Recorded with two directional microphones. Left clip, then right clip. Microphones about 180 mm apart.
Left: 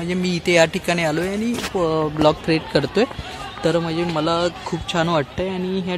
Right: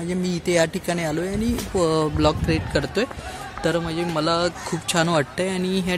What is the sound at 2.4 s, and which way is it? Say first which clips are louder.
Speech: left 4 dB; 5° left (ahead or behind).